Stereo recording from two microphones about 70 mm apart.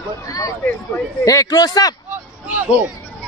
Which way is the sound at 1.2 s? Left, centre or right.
Left.